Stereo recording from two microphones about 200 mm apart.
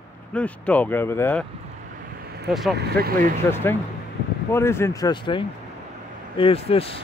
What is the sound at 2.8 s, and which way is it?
Speech, 55° right (ahead or behind).